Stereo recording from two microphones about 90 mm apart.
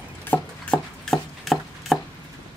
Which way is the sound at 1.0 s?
Centre (ahead or behind).